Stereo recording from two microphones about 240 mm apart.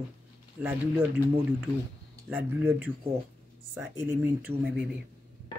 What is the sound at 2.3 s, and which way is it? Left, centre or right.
Speech, centre.